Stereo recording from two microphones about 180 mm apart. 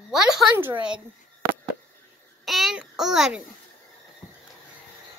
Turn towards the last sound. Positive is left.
turn(degrees=0)  # may be behind; listen again after turning